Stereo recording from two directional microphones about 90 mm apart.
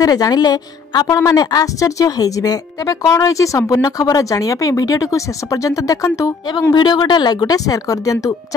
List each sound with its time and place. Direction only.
0.0 s a woman's voice: 45° left (ahead or behind)
6.7 s speech: 50° left (ahead or behind)